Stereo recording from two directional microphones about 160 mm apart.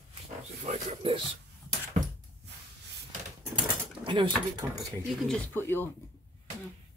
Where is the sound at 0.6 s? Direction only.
40° right (ahead or behind).